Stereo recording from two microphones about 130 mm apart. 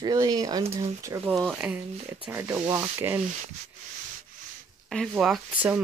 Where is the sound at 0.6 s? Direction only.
50° right (ahead or behind).